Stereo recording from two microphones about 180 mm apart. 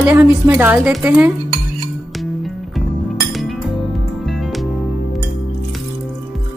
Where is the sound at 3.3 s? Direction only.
Centre (ahead or behind).